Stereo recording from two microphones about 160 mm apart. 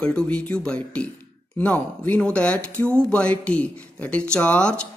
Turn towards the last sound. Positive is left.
turn(degrees=5)  # may be behind; listen again after turning